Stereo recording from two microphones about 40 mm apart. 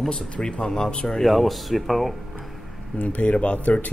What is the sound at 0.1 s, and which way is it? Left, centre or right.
Speech, left.